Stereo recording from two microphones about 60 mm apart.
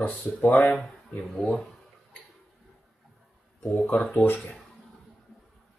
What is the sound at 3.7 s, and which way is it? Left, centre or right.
Speech, left.